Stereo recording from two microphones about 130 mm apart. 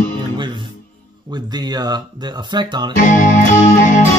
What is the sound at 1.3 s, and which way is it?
Speech, 35° right (ahead or behind).